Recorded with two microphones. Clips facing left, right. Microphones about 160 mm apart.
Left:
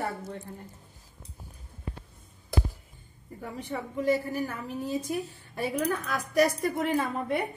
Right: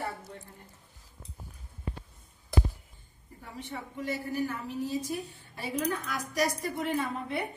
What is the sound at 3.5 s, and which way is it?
A woman's voice, 45° left (ahead or behind).